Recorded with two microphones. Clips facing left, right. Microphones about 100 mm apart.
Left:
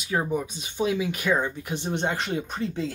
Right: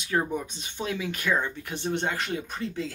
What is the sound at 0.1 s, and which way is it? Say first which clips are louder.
Speech: left 1 dB; 10° left (ahead or behind).